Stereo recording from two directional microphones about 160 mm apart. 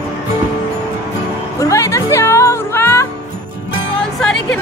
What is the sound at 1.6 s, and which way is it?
Music, 20° left (ahead or behind).